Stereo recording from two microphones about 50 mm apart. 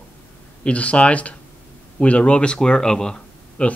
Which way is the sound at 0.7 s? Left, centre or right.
Left.